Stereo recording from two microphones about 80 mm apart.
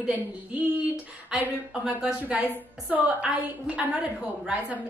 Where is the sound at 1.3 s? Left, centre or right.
Centre.